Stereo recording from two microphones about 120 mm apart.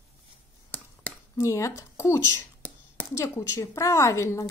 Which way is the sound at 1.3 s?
25° left (ahead or behind).